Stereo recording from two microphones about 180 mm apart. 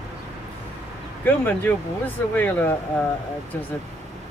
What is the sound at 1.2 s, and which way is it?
Speech, 10° left (ahead or behind).